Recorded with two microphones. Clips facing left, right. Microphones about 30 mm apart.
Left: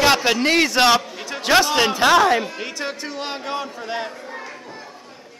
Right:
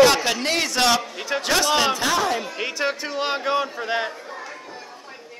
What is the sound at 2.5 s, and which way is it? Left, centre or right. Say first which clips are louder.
A man's voice: right 3 dB; centre.